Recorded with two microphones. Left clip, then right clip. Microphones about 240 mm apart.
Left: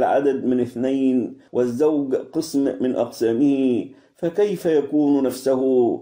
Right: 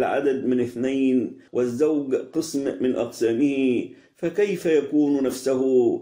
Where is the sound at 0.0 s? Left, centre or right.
Left.